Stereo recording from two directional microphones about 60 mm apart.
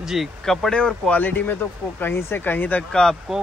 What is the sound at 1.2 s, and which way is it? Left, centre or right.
Speech, left.